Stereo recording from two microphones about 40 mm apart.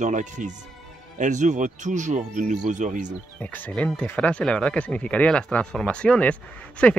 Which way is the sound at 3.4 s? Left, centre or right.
Left.